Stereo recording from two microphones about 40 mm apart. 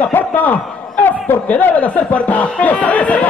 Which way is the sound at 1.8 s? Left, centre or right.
Left.